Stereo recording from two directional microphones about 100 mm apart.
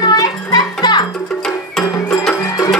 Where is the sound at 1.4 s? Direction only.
5° left (ahead or behind).